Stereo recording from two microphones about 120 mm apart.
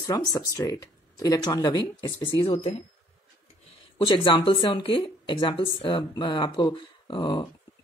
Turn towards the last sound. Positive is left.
turn(degrees=40)  # may be behind; listen again after turning